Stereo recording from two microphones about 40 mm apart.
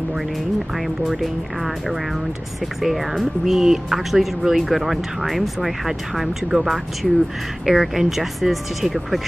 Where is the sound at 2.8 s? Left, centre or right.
Centre.